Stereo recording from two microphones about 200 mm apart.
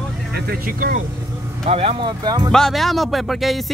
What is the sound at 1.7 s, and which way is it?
Speech, 30° right (ahead or behind).